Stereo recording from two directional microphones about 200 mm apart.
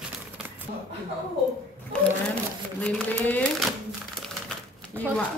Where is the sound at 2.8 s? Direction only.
5° left (ahead or behind).